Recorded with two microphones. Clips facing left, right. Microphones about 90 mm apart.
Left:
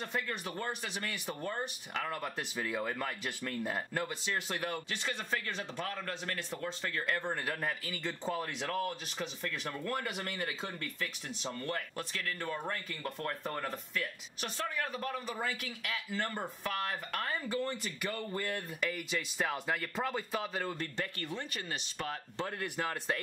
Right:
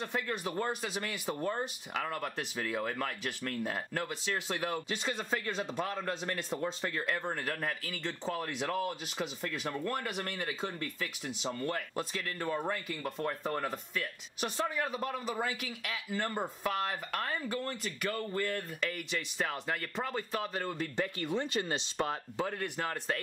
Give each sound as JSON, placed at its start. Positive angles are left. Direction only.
{"t": 0.0, "sound": "a man's voice", "side_deg": -5}
{"t": 4.8, "sound": "speech", "side_deg": -15}
{"t": 9.8, "sound": "a man's voice", "side_deg": 0}
{"t": 21.4, "sound": "speech", "side_deg": -30}
{"t": 22.4, "sound": "a man's voice", "side_deg": 0}